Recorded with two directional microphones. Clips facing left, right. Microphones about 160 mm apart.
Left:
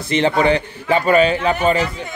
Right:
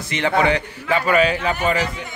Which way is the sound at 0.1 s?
30° left (ahead or behind).